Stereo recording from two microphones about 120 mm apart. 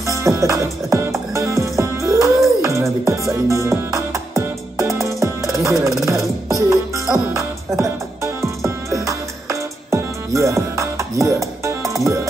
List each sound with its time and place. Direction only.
0.0 s music: 25° right (ahead or behind)